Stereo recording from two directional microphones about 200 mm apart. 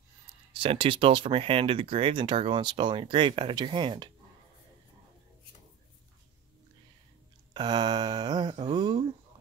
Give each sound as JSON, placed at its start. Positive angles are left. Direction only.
{"t": 0.6, "sound": "speech", "side_deg": -25}
{"t": 7.5, "sound": "speech", "side_deg": -20}